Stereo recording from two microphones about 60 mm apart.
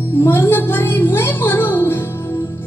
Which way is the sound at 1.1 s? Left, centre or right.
Left.